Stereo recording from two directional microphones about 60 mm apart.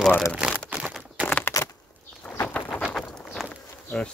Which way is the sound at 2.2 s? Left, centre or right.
Left.